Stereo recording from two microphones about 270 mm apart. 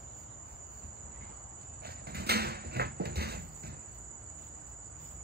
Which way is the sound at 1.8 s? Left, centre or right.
Right.